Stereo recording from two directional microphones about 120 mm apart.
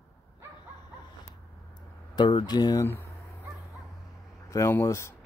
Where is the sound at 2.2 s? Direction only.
40° left (ahead or behind).